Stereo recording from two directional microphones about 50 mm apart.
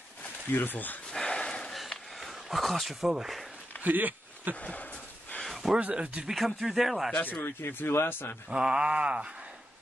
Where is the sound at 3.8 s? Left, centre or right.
Right.